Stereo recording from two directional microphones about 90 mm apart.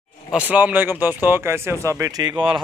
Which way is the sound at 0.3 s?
15° right (ahead or behind).